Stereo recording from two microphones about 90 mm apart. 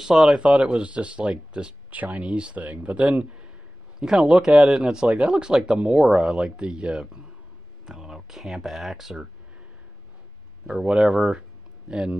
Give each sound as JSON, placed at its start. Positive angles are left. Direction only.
{"t": 0.0, "sound": "speech", "side_deg": -5}
{"t": 10.7, "sound": "speech", "side_deg": -5}